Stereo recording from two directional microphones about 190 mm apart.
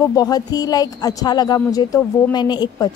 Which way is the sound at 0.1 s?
20° left (ahead or behind).